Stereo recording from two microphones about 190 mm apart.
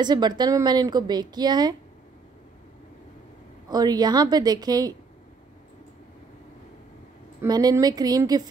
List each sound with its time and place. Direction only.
0.0 s speech: 20° right (ahead or behind)
3.7 s speech: 20° right (ahead or behind)
7.4 s speech: 20° right (ahead or behind)